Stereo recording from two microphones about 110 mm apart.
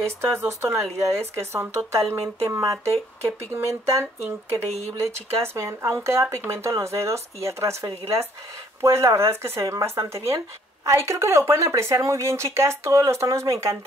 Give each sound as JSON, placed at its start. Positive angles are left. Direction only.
{"t": 0.0, "sound": "speech", "side_deg": -20}